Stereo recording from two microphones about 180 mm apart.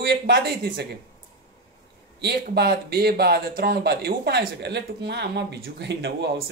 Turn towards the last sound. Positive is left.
turn(degrees=-65)  # may be behind; listen again after turning